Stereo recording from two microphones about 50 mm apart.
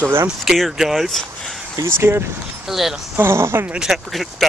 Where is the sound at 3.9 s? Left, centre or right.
Centre.